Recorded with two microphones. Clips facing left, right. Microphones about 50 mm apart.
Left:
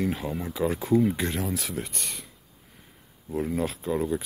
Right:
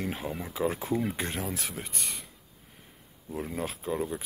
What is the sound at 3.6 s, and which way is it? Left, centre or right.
Speech, centre.